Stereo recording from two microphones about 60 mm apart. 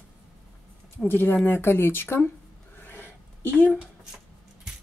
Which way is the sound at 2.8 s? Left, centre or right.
Left.